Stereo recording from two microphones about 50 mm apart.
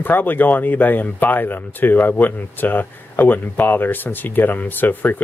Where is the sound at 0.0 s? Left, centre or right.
Left.